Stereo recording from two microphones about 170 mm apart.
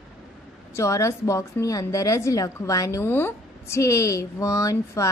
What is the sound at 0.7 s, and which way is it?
A woman's voice, 15° left (ahead or behind).